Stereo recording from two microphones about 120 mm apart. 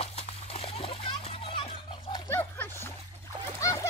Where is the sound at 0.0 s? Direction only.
60° left (ahead or behind).